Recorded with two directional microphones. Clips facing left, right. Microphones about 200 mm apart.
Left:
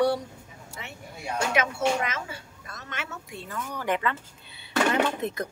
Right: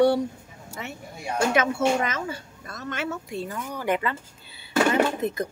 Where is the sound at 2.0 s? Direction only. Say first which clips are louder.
Right 4 dB; 40° right (ahead or behind).